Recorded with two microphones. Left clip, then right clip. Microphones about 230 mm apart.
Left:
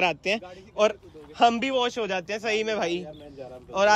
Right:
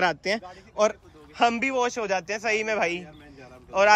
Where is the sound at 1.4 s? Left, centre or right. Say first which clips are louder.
Left 1 dB; centre.